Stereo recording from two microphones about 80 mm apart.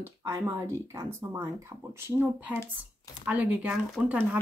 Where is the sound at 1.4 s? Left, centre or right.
Right.